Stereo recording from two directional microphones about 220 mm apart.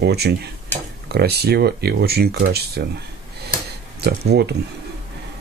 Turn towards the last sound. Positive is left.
turn(degrees=-50)  # may be behind; listen again after turning